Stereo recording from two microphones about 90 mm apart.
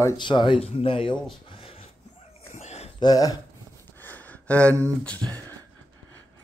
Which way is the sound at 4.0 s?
20° left (ahead or behind).